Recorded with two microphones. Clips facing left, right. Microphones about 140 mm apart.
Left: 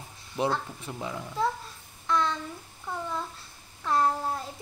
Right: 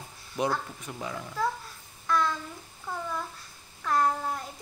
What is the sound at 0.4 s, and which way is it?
A child's voice, 25° left (ahead or behind).